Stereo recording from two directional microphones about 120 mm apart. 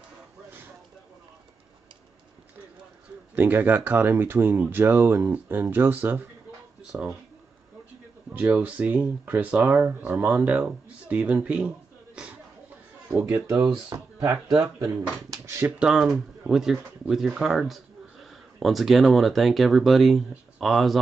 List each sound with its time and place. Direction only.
3.3 s speech: 15° right (ahead or behind)
8.3 s speech: 10° right (ahead or behind)
13.2 s speech: 20° right (ahead or behind)
13.8 s speech: 35° right (ahead or behind)
15.8 s speech: 5° right (ahead or behind)